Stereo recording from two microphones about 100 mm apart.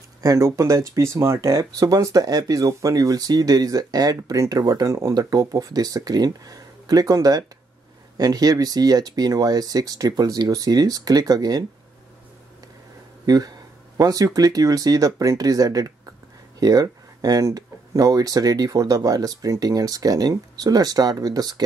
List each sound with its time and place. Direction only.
0.2 s speech: 35° right (ahead or behind)
13.2 s speech: 40° right (ahead or behind)